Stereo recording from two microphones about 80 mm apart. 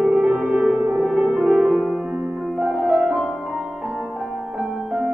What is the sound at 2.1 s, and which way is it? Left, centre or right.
Music, centre.